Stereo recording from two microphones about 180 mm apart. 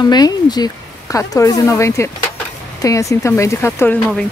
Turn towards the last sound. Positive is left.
turn(degrees=10)  # may be behind; listen again after turning